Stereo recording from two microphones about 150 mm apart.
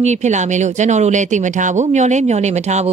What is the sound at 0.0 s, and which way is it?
Speech, 50° right (ahead or behind).